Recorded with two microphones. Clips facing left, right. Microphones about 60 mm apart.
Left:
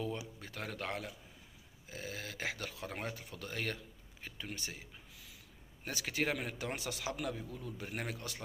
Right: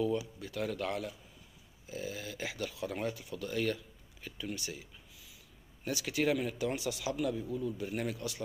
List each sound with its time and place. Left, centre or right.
0.4 s a man's voice: left
1.9 s speech: left